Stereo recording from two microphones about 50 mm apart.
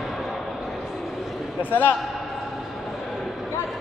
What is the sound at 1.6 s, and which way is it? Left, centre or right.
Speech, left.